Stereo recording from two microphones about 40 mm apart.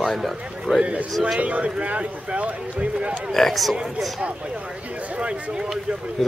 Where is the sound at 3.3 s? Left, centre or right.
Centre.